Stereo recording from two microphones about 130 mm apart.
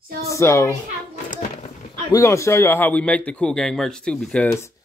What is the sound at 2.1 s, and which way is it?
Speech, 25° left (ahead or behind).